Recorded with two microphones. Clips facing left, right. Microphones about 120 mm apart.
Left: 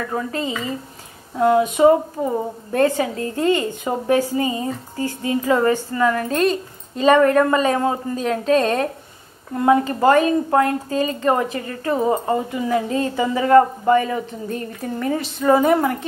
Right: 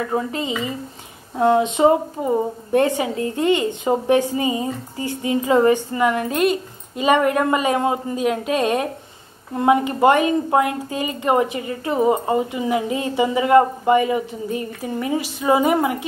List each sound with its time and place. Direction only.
0.0 s a woman's voice: 20° right (ahead or behind)